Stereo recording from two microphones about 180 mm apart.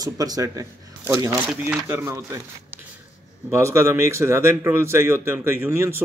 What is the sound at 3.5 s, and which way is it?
A man's voice, 15° right (ahead or behind).